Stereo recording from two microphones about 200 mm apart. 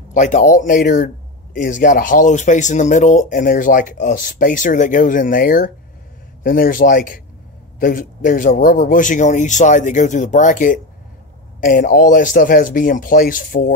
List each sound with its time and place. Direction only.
0.1 s speech: 40° left (ahead or behind)